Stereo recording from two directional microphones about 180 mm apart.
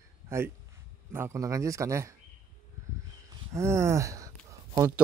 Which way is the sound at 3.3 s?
15° right (ahead or behind).